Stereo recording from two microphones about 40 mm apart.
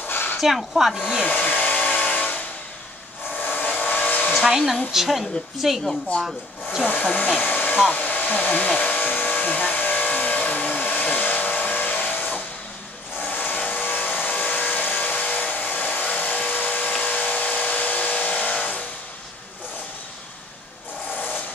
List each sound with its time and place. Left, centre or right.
0.1 s a sound: left
0.4 s speech: centre
1.3 s hair dryer: left
2.0 s a sound: left
3.4 s vehicle: left
4.3 s hair dryer: centre
4.9 s a woman's voice: centre
7.0 s hair dryer: left
7.4 s hair dryer: left
10.8 s hair dryer: left
11.7 s vehicle: left